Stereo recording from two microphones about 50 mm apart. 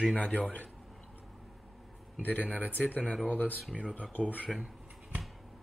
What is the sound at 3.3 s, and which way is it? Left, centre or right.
Speech, left.